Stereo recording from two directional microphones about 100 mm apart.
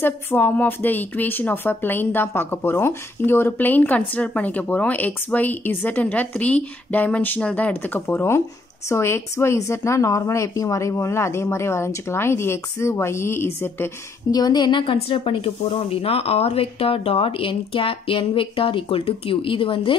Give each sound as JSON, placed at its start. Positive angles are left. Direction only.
{"t": 0.0, "sound": "a woman's voice", "side_deg": 20}
{"t": 14.3, "sound": "a woman's voice", "side_deg": 45}
{"t": 15.0, "sound": "speech", "side_deg": 65}